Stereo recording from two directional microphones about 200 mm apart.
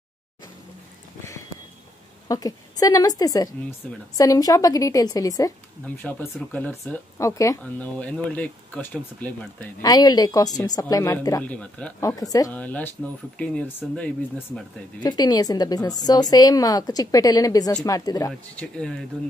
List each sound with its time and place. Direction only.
2.2 s a woman's voice: 20° left (ahead or behind)
9.8 s speech: 20° left (ahead or behind)
12.0 s speech: 15° left (ahead or behind)
15.0 s a woman's voice: 20° left (ahead or behind)
18.6 s speech: 5° left (ahead or behind)